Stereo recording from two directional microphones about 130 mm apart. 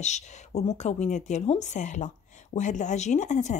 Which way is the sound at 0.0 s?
60° left (ahead or behind).